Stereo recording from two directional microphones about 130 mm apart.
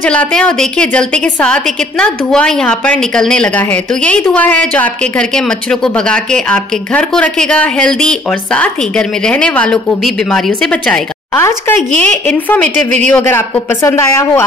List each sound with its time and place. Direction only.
0.0 s a woman's voice: 10° left (ahead or behind)